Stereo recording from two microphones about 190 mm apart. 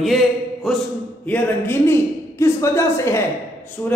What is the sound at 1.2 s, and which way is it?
A woman's voice, 10° left (ahead or behind).